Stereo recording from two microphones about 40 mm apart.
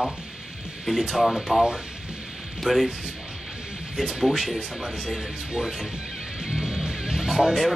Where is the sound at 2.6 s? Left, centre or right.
Centre.